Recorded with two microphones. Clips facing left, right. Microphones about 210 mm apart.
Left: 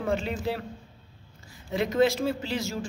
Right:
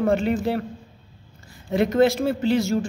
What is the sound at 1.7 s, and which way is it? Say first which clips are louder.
Speech: right 5 dB; 60° right (ahead or behind).